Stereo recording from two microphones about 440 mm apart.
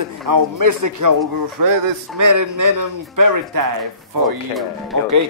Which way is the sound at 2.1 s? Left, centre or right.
Right.